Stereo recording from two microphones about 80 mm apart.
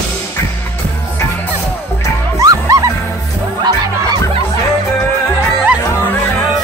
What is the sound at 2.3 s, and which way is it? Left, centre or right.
Music, right.